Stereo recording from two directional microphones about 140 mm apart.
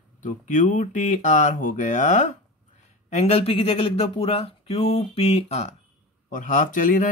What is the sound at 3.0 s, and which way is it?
Speech, 50° left (ahead or behind).